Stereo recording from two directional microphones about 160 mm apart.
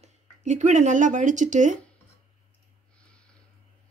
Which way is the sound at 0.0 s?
45° right (ahead or behind).